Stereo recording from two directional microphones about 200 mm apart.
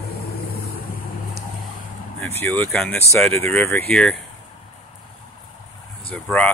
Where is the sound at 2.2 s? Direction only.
10° left (ahead or behind).